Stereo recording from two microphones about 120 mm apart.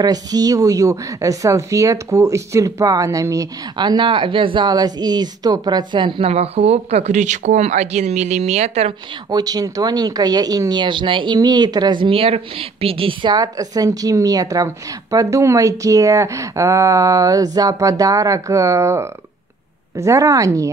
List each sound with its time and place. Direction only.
0.0 s a woman's voice: 30° right (ahead or behind)
6.3 s speech: 60° right (ahead or behind)
9.3 s a woman's voice: 30° right (ahead or behind)